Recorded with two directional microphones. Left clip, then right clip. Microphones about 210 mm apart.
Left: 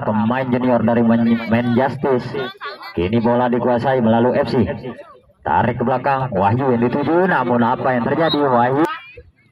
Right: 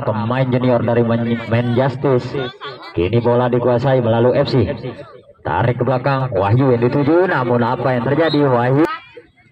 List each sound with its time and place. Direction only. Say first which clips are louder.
0.0 s a man's voice: even; 30° left (ahead or behind); by 8.8 s centre (ahead or behind)